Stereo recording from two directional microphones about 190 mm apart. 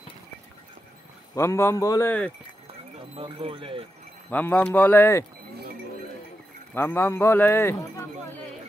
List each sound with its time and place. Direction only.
1.3 s a man's voice: 15° left (ahead or behind)
3.2 s speech: 30° right (ahead or behind)
4.3 s a man's voice: 10° left (ahead or behind)
6.7 s a man's voice: 10° left (ahead or behind)